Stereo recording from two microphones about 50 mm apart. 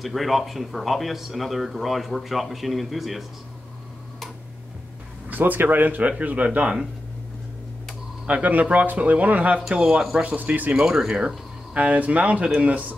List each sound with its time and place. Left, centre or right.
0.0 s speech: centre
5.3 s speech: right; by 6.9 s centre
8.3 s speech: right
9.7 s speech: centre
10.2 s speech: right
10.7 s speech: centre
11.7 s speech: right